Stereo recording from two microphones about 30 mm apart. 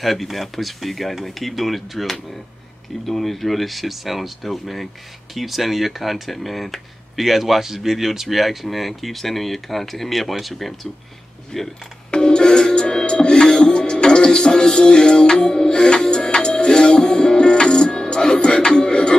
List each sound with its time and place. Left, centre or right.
0.0 s speech: centre
11.5 s speech: left
12.1 s music: left